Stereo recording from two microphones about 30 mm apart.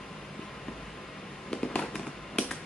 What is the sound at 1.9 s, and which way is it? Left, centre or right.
Fireworks, centre.